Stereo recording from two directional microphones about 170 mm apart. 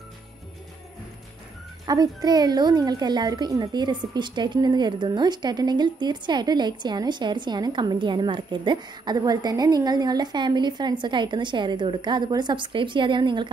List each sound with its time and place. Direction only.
1.9 s a woman's voice: 25° right (ahead or behind)